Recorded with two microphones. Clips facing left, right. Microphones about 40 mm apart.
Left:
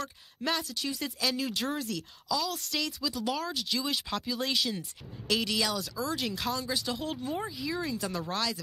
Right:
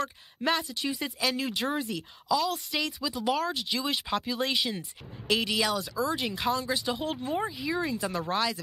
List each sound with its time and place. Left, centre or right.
0.0 s speech: centre